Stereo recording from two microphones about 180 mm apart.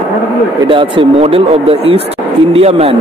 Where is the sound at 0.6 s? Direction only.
30° right (ahead or behind).